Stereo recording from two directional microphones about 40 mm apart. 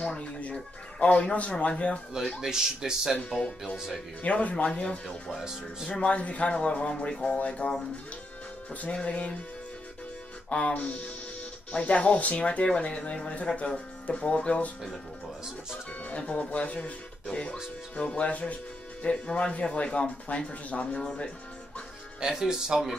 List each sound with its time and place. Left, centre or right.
0.0 s speech: left
2.4 s speech: centre
4.2 s speech: left
5.9 s speech: left
9.0 s speech: left
10.7 s speech: left
15.9 s speech: left
17.3 s speech: left
22.2 s speech: centre